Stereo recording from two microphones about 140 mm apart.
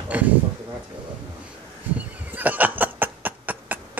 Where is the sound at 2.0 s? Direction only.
10° right (ahead or behind).